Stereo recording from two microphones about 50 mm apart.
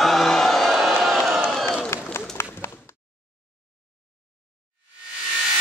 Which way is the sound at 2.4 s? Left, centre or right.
Left.